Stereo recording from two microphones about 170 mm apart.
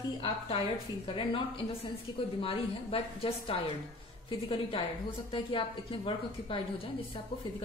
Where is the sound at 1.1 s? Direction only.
30° left (ahead or behind).